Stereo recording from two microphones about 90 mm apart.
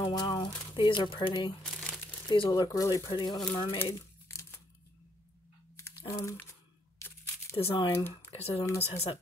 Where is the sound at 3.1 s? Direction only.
55° left (ahead or behind).